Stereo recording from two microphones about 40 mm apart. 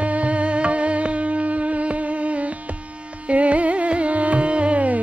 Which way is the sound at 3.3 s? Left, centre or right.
Right.